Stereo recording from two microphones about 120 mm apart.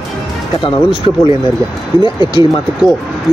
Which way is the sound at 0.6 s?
45° left (ahead or behind).